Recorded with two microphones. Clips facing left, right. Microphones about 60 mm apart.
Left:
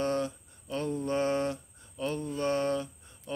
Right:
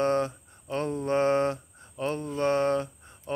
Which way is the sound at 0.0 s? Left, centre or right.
Right.